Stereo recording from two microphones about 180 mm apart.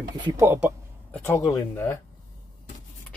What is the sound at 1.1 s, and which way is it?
Speech, 15° left (ahead or behind).